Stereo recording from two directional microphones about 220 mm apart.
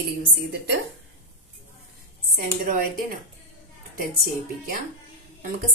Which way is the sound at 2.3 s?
40° right (ahead or behind).